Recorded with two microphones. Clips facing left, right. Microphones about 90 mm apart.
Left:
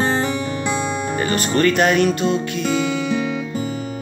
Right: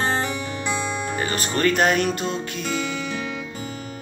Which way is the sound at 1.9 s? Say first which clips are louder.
Left 5 dB; 65° left (ahead or behind).